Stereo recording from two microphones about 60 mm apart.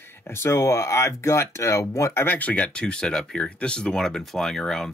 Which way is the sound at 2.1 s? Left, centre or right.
Left.